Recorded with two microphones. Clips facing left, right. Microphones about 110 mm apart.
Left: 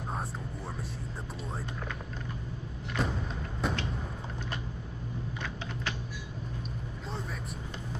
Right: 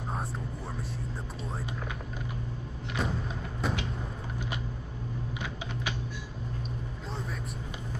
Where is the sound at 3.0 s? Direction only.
Centre (ahead or behind).